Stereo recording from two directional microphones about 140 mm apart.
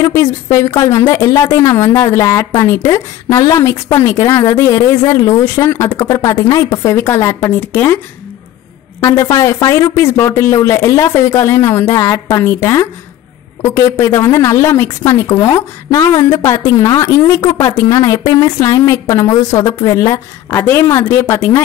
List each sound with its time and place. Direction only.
0.0 s speech: 25° left (ahead or behind)
9.0 s a woman's voice: 25° left (ahead or behind)